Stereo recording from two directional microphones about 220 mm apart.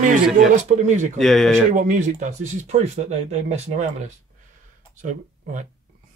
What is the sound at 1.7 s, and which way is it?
Speech, 35° right (ahead or behind).